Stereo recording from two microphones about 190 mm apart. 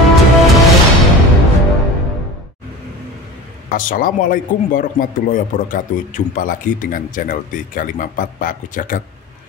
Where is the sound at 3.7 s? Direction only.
45° left (ahead or behind).